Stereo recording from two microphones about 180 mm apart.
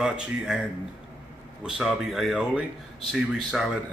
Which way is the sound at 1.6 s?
Centre (ahead or behind).